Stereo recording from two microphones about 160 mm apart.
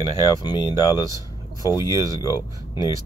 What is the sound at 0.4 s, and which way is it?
Speech, 25° left (ahead or behind).